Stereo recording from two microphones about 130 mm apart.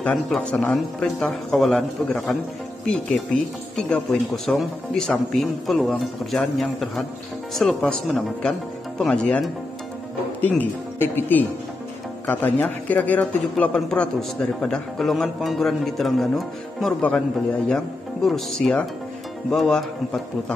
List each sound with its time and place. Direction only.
0.0 s speech: 10° left (ahead or behind)
3.7 s speech: centre (ahead or behind)